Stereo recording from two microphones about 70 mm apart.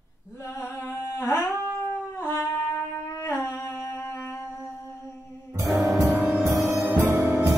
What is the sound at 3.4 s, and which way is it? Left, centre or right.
Humming, left.